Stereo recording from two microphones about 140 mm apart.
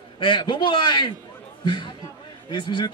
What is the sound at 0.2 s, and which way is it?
Speech, 35° left (ahead or behind).